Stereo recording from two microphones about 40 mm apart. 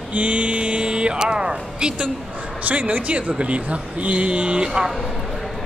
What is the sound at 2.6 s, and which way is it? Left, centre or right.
A man's voice, right.